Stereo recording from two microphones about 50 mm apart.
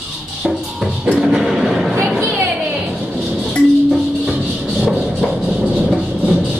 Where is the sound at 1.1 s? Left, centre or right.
Centre.